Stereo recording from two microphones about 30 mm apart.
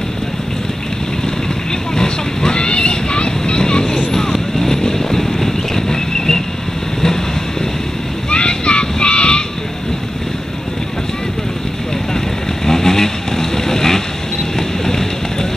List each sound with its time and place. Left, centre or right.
2.0 s vehicle: left
4.1 s vehicle: centre
8.3 s a sound: left
12.6 s vehicle: centre